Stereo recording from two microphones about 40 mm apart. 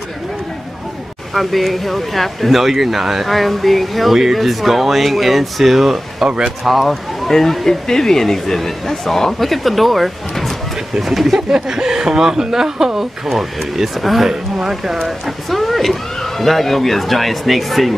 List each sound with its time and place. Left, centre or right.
1.3 s speech: centre
6.2 s speech: right
6.6 s speech: centre
11.3 s speech: centre
15.5 s speech: centre